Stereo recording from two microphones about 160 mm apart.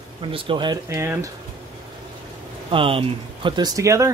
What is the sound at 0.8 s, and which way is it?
Speech, 20° right (ahead or behind).